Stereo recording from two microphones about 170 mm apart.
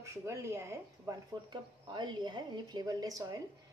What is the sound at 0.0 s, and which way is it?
A woman's voice, 15° right (ahead or behind).